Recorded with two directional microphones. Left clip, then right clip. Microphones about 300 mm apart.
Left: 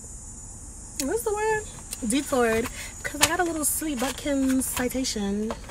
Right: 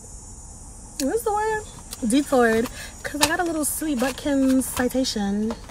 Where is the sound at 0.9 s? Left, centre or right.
Centre.